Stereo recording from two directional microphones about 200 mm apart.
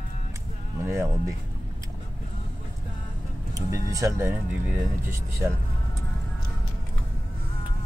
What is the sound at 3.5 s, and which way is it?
Speech, 15° right (ahead or behind).